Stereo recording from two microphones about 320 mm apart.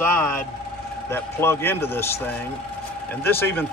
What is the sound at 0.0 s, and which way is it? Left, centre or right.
A man's voice, centre.